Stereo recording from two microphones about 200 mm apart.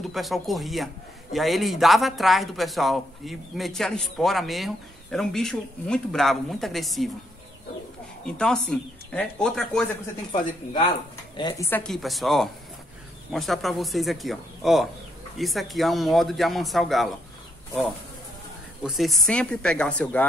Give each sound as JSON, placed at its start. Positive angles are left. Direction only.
{"t": 0.1, "sound": "speech", "side_deg": 0}
{"t": 8.3, "sound": "speech", "side_deg": 5}
{"t": 11.3, "sound": "a woman's voice", "side_deg": 20}
{"t": 11.7, "sound": "speech", "side_deg": 5}
{"t": 18.9, "sound": "speech", "side_deg": 0}